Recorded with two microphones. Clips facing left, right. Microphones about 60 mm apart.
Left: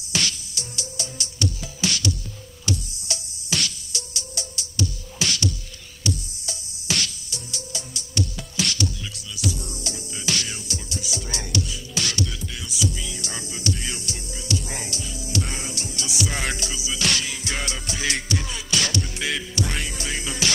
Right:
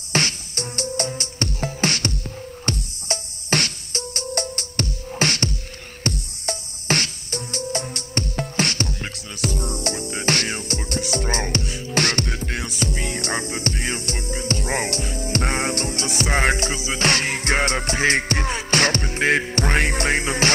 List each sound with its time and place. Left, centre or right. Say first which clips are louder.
0.1 s music: right 5 dB; right